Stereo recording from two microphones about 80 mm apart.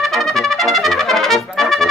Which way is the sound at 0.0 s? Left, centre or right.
Centre.